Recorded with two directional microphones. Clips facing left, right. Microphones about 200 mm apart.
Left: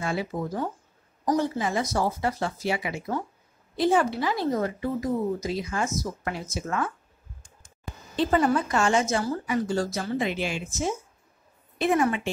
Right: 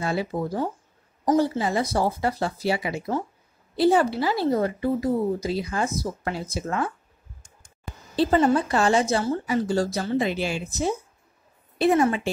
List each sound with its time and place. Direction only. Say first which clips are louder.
0.0 s a woman's voice: right 3 dB; 35° right (ahead or behind)
8.2 s a woman's voice: right 3 dB; 30° right (ahead or behind)